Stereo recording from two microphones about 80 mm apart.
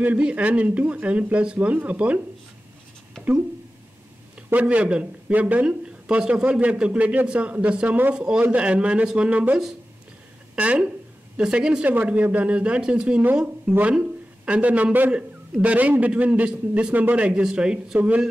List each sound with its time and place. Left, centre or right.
0.0 s speech: centre
4.5 s speech: centre
11.9 s speech: right